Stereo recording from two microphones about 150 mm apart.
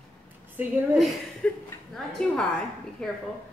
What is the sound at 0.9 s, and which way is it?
A woman's voice, centre (ahead or behind).